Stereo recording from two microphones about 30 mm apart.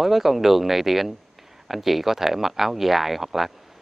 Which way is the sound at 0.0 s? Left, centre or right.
Centre.